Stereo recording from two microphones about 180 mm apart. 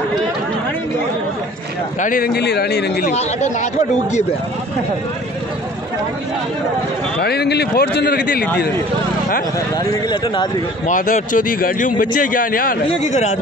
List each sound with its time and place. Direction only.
2.0 s a man's voice: 50° left (ahead or behind)
7.2 s a man's voice: 60° left (ahead or behind)
9.8 s speech: 20° left (ahead or behind)
10.9 s a man's voice: 45° left (ahead or behind)